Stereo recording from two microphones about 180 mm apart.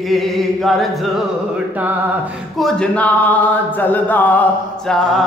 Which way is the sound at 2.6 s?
5° left (ahead or behind).